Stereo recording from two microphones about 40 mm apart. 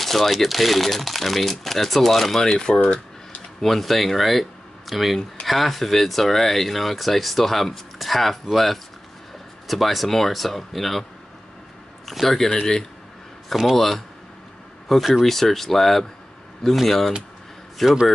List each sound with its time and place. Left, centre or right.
0.0 s speech: centre
2.4 s speech: centre
3.6 s speech: centre
12.1 s speech: centre
12.4 s speech: centre
13.7 s speech: centre